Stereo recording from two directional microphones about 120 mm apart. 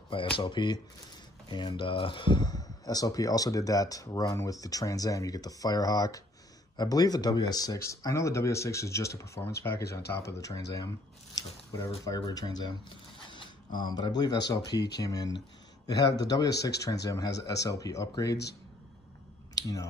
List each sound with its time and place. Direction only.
0.1 s speech: 45° left (ahead or behind)
13.2 s mechanisms: 40° left (ahead or behind)
13.7 s speech: 40° left (ahead or behind)
19.5 s speech: 30° left (ahead or behind)